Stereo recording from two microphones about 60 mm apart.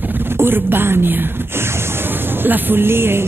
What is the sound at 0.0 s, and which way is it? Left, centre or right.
Speech, right.